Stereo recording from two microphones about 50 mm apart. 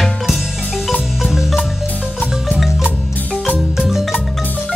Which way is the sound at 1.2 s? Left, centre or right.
Centre.